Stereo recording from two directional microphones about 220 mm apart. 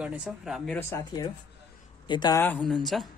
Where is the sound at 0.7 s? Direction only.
10° left (ahead or behind).